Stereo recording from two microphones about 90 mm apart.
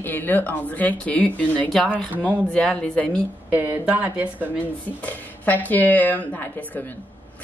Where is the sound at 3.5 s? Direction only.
20° right (ahead or behind).